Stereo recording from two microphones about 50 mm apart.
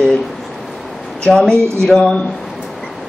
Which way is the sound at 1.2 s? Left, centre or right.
Centre.